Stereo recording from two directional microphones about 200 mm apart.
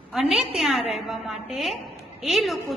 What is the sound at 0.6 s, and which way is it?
A woman's voice, centre (ahead or behind).